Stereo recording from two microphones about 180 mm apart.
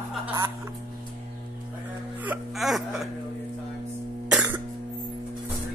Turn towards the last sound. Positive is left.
turn(degrees=-10)  # may be behind; listen again after turning